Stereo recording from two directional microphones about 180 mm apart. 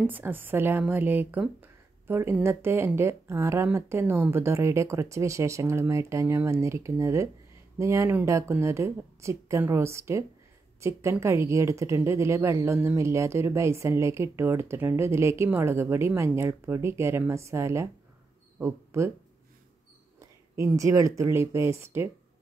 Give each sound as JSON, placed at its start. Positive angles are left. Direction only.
{"t": 0.0, "sound": "speech", "side_deg": -10}
{"t": 20.2, "sound": "speech", "side_deg": -15}